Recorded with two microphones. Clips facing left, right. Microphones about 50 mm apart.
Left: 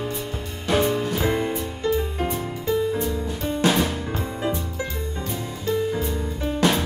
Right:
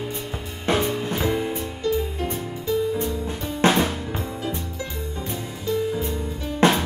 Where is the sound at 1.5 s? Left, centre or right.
Centre.